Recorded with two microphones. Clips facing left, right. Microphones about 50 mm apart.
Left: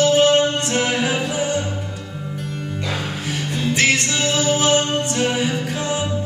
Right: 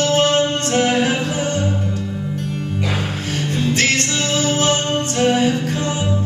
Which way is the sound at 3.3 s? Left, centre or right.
Centre.